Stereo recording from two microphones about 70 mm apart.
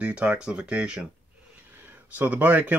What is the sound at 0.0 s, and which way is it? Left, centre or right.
Speech, centre.